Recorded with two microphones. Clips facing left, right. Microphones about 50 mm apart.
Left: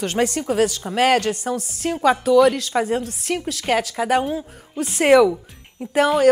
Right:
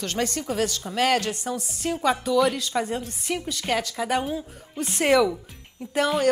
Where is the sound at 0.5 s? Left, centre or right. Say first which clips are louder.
Left 6 dB; centre.